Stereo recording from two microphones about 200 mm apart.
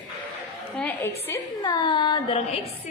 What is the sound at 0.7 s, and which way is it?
A woman's voice, 10° left (ahead or behind).